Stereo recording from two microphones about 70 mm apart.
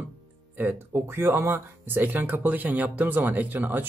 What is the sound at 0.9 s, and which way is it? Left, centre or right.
Speech, right.